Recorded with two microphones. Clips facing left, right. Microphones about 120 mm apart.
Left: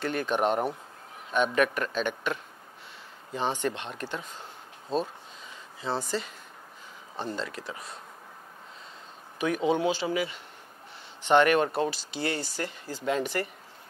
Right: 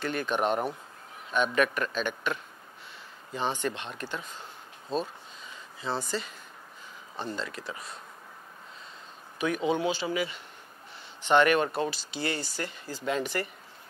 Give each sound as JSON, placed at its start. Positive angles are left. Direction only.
{"t": 0.0, "sound": "speech", "side_deg": 40}
{"t": 3.3, "sound": "speech", "side_deg": 30}
{"t": 5.8, "sound": "speech", "side_deg": 35}
{"t": 9.4, "sound": "speech", "side_deg": 40}
{"t": 10.0, "sound": "speech", "side_deg": 30}
{"t": 11.2, "sound": "speech", "side_deg": 40}
{"t": 11.9, "sound": "speech", "side_deg": 50}
{"t": 12.4, "sound": "speech", "side_deg": 35}